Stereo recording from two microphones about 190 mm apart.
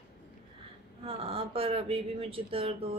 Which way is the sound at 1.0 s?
30° right (ahead or behind).